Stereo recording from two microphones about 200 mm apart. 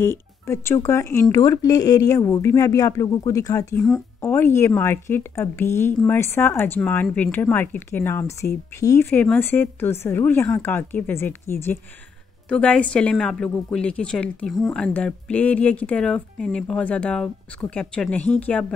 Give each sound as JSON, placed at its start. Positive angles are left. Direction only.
{"t": 0.0, "sound": "a woman's voice", "side_deg": 15}